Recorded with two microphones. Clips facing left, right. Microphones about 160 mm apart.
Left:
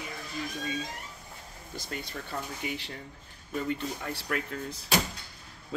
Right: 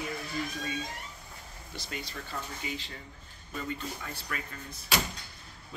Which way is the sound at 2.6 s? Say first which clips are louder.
Left 3 dB; 65° left (ahead or behind).